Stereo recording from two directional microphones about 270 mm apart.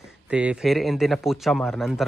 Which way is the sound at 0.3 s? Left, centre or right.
Centre.